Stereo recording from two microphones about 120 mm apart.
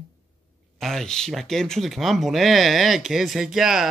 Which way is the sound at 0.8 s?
5° left (ahead or behind).